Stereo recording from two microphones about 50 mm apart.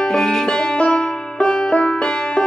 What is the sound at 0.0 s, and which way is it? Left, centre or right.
Music, centre.